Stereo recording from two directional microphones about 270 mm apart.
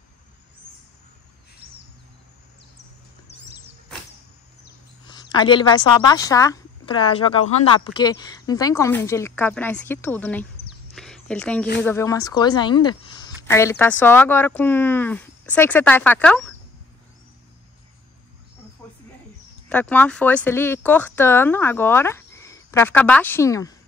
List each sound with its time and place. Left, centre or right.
5.0 s speech: centre
11.0 s a sound: centre
11.8 s speech: centre
19.7 s speech: centre